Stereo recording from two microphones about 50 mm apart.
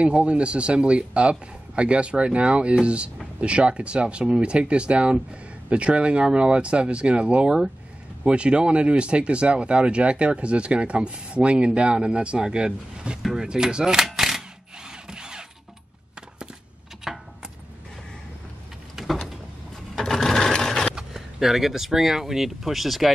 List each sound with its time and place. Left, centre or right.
0.0 s speech: right
13.2 s speech: centre
13.5 s speech: centre
14.0 s a sound: centre
17.0 s a sound: centre
19.0 s vehicle: centre
20.0 s sewing machine: centre
20.9 s speech: centre